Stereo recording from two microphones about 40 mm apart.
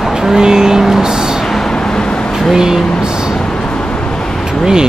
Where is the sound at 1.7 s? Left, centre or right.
Centre.